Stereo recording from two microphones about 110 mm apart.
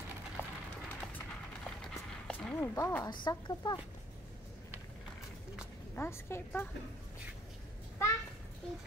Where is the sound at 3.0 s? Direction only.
40° left (ahead or behind).